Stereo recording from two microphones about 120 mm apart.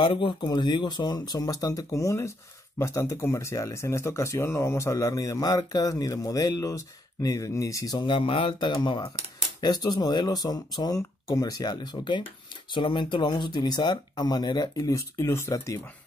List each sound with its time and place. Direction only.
0.2 s speech: 45° left (ahead or behind); by 15.8 s 25° left (ahead or behind)